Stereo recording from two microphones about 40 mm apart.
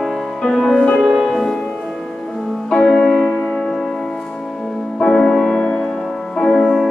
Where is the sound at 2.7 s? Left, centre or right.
Centre.